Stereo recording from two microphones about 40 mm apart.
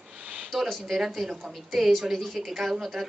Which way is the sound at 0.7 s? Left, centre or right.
Centre.